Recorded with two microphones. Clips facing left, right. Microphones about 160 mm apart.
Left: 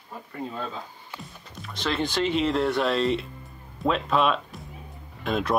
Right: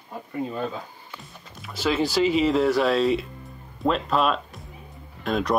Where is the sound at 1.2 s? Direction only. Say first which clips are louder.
Left 2 dB; 5° right (ahead or behind).